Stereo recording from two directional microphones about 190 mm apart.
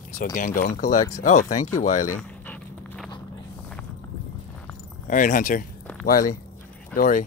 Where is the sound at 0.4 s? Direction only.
45° left (ahead or behind).